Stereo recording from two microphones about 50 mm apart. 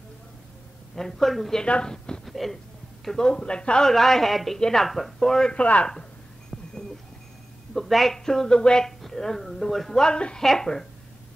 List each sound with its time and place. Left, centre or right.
0.9 s a woman's voice: centre
1.6 s speech: centre
2.2 s a woman's voice: centre
3.9 s a woman's voice: centre
5.5 s a man's voice: left
6.5 s a sound: left
7.7 s a woman's voice: centre